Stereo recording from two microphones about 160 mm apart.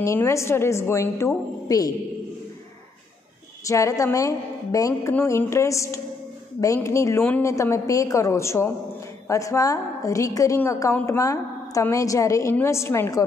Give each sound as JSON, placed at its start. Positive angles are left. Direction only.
{"t": 0.0, "sound": "a woman's voice", "side_deg": 20}
{"t": 3.6, "sound": "a woman's voice", "side_deg": 20}